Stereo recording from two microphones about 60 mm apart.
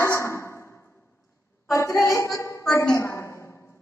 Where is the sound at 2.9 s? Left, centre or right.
Left.